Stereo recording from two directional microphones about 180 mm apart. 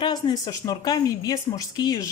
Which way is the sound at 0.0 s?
20° left (ahead or behind).